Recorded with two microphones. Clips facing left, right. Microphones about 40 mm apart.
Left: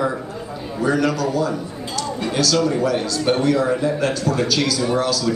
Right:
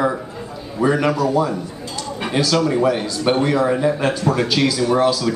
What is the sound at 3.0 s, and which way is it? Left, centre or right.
A man's voice, centre.